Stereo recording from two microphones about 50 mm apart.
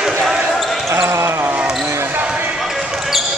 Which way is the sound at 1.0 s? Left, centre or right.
Right.